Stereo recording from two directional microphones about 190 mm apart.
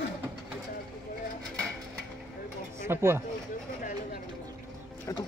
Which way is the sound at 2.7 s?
15° right (ahead or behind).